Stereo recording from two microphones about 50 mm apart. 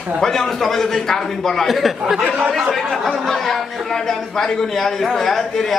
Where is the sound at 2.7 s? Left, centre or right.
Centre.